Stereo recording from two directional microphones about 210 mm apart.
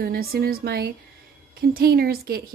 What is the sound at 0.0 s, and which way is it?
Speech, 45° right (ahead or behind).